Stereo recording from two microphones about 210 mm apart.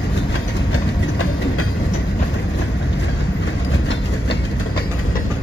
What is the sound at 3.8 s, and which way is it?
Train, 60° left (ahead or behind).